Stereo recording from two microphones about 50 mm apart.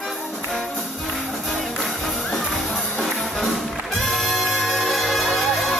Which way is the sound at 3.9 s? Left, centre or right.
Centre.